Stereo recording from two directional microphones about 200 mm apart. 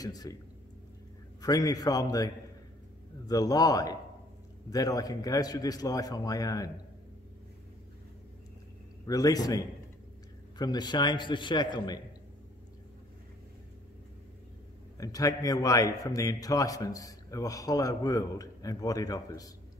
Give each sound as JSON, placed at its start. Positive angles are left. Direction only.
{"t": 0.0, "sound": "a man's voice", "side_deg": 20}
{"t": 1.4, "sound": "a man's voice", "side_deg": 20}
{"t": 9.0, "sound": "a man's voice", "side_deg": 20}
{"t": 15.0, "sound": "a man's voice", "side_deg": 15}